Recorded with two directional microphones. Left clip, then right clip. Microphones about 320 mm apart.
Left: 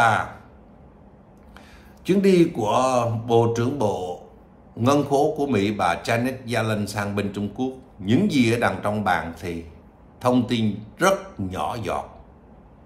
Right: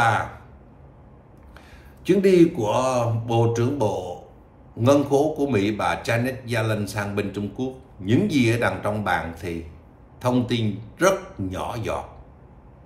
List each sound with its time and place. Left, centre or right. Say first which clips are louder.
0.0 s a man's voice: left 2 dB; centre
2.0 s a man's voice: right 2 dB; centre